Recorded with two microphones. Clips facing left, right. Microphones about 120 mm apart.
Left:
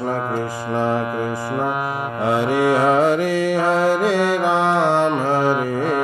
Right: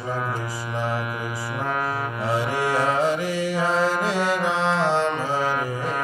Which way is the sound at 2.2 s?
55° left (ahead or behind).